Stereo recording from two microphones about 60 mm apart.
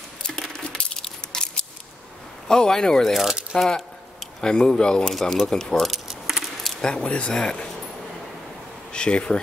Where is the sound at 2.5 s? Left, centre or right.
Centre.